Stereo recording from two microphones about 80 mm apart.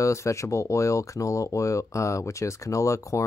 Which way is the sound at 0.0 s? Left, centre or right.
Left.